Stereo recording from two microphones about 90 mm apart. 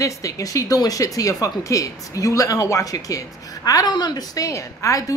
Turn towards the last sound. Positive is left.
turn(degrees=35)  # may be behind; listen again after turning